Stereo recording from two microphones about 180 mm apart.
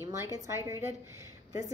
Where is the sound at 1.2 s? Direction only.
20° right (ahead or behind).